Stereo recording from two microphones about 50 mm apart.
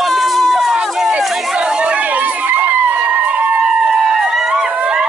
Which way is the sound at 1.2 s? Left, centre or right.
Centre.